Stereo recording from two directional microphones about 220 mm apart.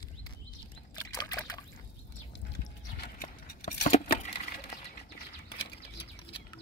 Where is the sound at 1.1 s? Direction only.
15° left (ahead or behind).